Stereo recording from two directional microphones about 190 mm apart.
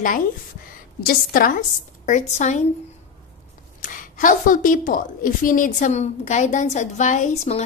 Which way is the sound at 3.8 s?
45° left (ahead or behind).